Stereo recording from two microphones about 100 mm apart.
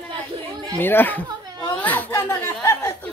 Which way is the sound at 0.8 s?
20° left (ahead or behind).